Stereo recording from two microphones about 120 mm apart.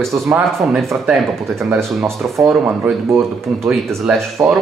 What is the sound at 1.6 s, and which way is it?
Speech, 20° right (ahead or behind).